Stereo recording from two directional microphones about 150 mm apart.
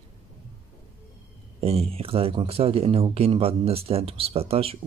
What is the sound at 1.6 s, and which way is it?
Speech, 40° right (ahead or behind).